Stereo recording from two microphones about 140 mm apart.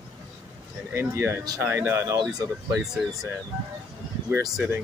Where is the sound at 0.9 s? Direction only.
20° right (ahead or behind).